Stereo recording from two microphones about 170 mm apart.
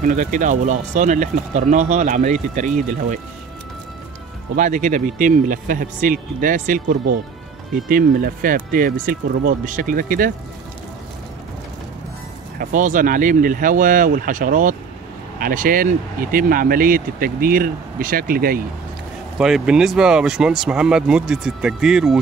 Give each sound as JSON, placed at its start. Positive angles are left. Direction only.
{"t": 0.0, "sound": "speech", "side_deg": -50}
{"t": 4.6, "sound": "speech", "side_deg": -50}
{"t": 12.5, "sound": "speech", "side_deg": -50}
{"t": 19.3, "sound": "speech", "side_deg": -5}